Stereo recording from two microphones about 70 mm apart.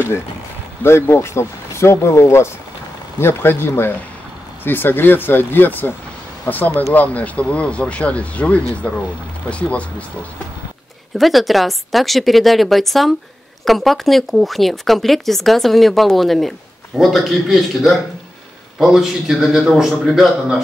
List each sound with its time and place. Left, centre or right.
0.8 s speech: left; by 10.0 s centre
11.1 s speech: centre